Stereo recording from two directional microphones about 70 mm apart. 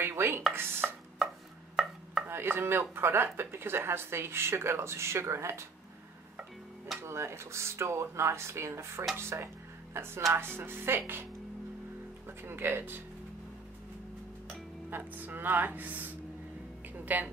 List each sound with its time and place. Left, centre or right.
0.0 s chopping: right
0.8 s chopping: centre
2.2 s speech: right
7.0 s speech: right
12.3 s speech: right
14.9 s speech: right